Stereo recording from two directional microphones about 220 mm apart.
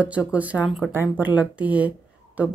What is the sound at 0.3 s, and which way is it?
Speech, 5° right (ahead or behind).